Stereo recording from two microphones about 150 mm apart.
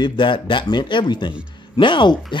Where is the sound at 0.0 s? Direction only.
30° left (ahead or behind).